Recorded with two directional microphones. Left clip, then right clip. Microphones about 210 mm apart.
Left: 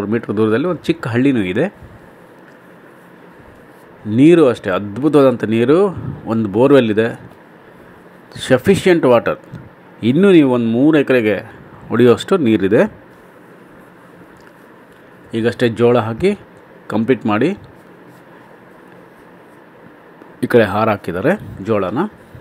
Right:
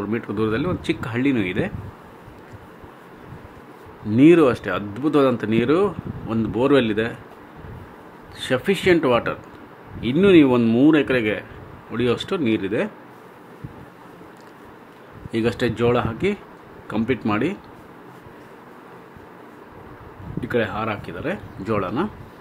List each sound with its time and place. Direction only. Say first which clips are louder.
0.0 s speech: left 7 dB; 20° left (ahead or behind)
4.2 s speech: left 4 dB; 15° left (ahead or behind)
8.4 s speech: left 8 dB; 20° left (ahead or behind)
10.6 s speech: left 3 dB; centre (ahead or behind)
10.9 s speech: left 5 dB; 20° left (ahead or behind)
15.3 s speech: left 6 dB; 10° left (ahead or behind)
20.3 s speech: left 10 dB; 30° left (ahead or behind)
21.6 s speech: left 6 dB; 15° left (ahead or behind)